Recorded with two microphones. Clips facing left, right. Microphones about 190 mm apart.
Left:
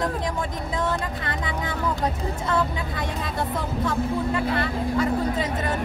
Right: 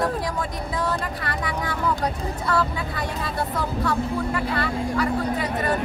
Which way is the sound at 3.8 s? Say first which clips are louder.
Left 1 dB; 20° left (ahead or behind).